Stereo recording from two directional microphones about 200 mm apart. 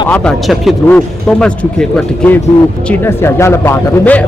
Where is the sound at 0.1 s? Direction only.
5° left (ahead or behind).